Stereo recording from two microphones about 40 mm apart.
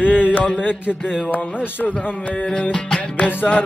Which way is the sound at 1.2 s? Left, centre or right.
Left.